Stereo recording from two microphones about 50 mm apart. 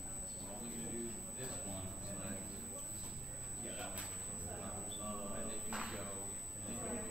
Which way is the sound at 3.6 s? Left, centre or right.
Centre.